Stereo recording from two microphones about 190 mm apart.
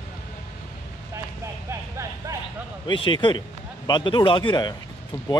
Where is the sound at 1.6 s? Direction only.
15° right (ahead or behind).